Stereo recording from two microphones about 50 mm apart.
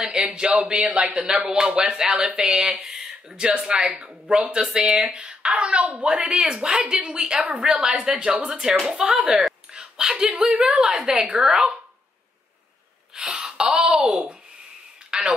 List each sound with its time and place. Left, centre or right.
0.1 s speech: centre
0.5 s a woman's voice: right
1.3 s a woman's voice: centre
6.0 s a woman's voice: centre
10.7 s a woman's voice: centre
13.1 s speech: centre
15.0 s a sound: centre